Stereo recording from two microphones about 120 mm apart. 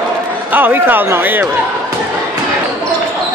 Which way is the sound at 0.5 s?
15° right (ahead or behind).